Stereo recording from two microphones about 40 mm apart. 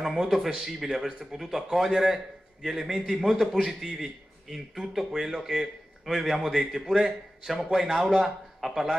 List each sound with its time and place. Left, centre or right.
0.0 s a man's voice: centre